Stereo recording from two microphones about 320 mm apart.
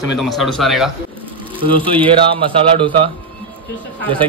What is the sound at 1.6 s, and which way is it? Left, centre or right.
Speech, centre.